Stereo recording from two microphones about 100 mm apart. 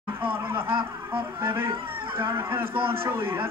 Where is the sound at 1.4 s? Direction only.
25° right (ahead or behind).